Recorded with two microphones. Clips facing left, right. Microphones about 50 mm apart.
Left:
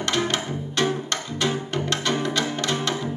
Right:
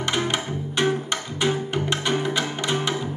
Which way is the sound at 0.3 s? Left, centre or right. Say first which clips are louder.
Even; centre.